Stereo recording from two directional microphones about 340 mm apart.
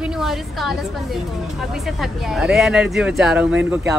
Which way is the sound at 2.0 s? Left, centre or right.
Centre.